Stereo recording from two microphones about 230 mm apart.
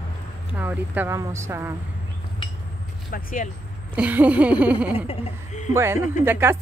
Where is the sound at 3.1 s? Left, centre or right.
Left.